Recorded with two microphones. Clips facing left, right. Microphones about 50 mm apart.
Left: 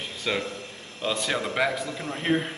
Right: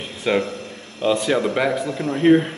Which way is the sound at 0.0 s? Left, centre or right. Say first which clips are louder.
Right 8 dB; right.